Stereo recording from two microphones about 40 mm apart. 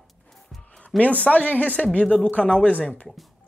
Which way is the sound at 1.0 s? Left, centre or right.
Left.